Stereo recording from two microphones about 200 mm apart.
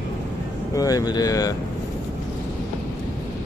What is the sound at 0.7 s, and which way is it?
Speech, 20° left (ahead or behind).